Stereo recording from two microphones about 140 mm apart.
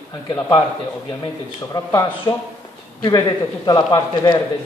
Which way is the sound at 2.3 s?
25° left (ahead or behind).